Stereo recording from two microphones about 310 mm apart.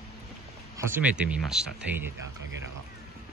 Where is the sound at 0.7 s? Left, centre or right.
Centre.